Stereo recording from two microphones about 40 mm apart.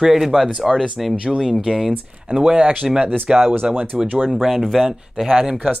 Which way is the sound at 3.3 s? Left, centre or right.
Right.